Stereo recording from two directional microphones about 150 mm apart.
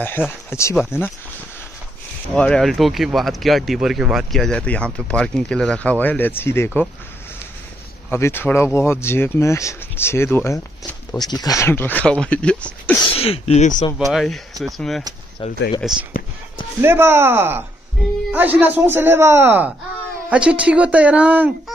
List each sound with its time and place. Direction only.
0.0 s speech: 15° left (ahead or behind)
2.3 s speech: 5° left (ahead or behind)
8.1 s speech: 15° left (ahead or behind)
11.1 s speech: 25° left (ahead or behind); by 13.0 s 10° left (ahead or behind)
13.1 s speech: 40° left (ahead or behind)
13.9 s speech: centre (ahead or behind)
15.4 s speech: 35° left (ahead or behind)
15.8 s speech: 5° right (ahead or behind)
16.8 s speech: 15° right (ahead or behind)